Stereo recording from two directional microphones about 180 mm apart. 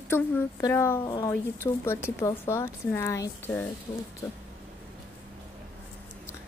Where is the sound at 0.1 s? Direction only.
15° left (ahead or behind).